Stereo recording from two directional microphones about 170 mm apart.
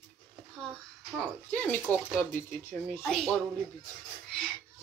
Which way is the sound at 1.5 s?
10° left (ahead or behind).